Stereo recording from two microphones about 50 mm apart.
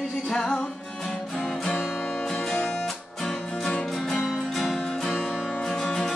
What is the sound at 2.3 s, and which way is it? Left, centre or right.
Music, centre.